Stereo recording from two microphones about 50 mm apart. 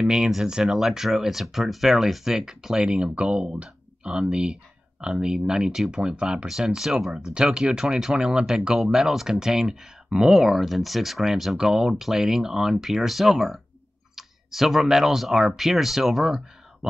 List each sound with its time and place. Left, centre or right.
0.7 s speech: centre